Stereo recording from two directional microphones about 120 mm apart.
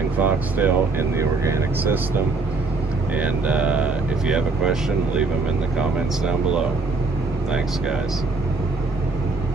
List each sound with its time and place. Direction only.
0.2 s speech: 15° right (ahead or behind)
3.2 s speech: 10° right (ahead or behind)